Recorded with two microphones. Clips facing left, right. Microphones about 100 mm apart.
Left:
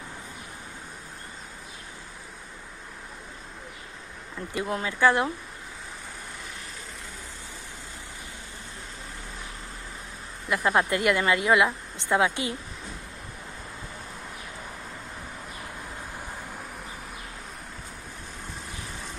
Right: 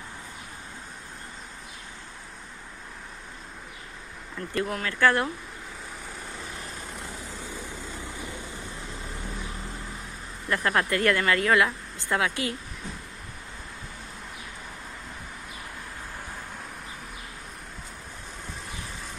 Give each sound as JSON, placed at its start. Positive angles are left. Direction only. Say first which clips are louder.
{"t": 4.6, "sound": "speech", "louder": "left 2 dB", "side_deg": 20}
{"t": 10.5, "sound": "speech", "louder": "left 2 dB", "side_deg": 15}